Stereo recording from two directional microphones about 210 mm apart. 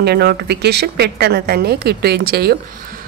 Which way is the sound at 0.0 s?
50° right (ahead or behind).